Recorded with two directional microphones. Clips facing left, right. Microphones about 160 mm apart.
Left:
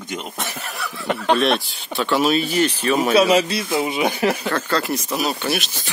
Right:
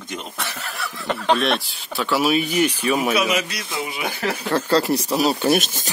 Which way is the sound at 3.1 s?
30° left (ahead or behind).